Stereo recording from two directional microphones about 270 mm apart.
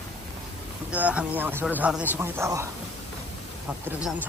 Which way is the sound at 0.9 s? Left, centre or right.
Centre.